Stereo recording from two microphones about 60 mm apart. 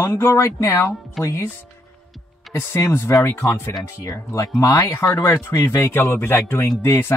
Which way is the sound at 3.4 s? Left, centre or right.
Left.